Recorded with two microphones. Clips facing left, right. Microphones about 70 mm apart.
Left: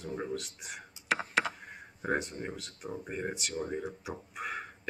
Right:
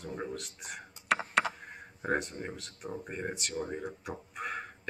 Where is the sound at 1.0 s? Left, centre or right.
Centre.